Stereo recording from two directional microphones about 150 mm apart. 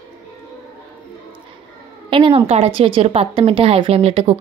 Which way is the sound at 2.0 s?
35° right (ahead or behind).